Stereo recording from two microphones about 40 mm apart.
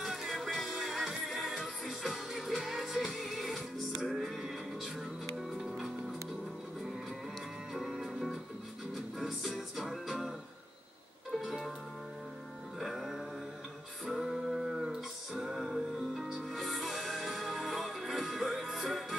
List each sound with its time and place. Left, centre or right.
0.0 s music: centre
7.7 s music: centre
11.3 s music: centre
12.7 s music: centre